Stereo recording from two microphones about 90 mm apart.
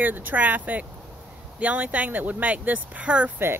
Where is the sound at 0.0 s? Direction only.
20° right (ahead or behind).